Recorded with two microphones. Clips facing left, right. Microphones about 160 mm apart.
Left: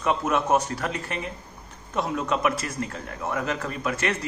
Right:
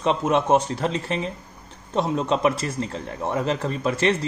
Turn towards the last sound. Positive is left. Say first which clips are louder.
# right 5 dB
turn(degrees=-30)  # may be behind; listen again after turning